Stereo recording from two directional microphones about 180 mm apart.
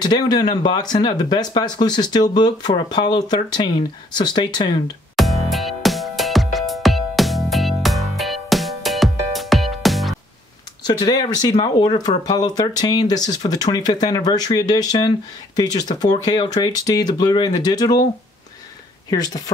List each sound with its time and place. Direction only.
0.0 s speech: 25° left (ahead or behind)
5.1 s music: centre (ahead or behind)
10.8 s speech: 25° left (ahead or behind)
19.0 s speech: 20° left (ahead or behind)